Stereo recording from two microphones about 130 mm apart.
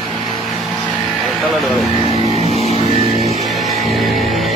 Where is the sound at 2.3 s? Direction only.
50° right (ahead or behind).